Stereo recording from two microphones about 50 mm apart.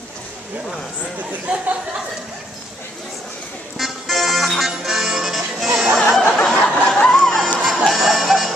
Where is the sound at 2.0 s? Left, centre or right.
Centre.